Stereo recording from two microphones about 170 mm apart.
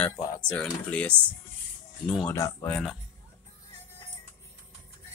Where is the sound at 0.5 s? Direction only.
5° left (ahead or behind).